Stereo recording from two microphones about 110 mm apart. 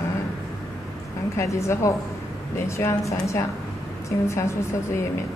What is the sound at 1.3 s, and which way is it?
A woman's voice, 25° left (ahead or behind).